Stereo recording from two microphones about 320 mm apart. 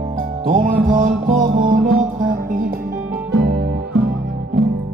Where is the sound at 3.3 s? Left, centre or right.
Right.